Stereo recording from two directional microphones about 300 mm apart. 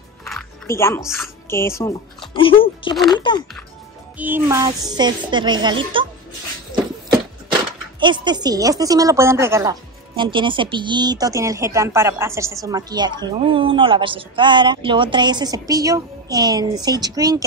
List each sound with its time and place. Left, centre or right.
0.2 s music: centre
1.5 s speech: centre
2.6 s music: centre
4.2 s speech: centre
8.0 s speech: centre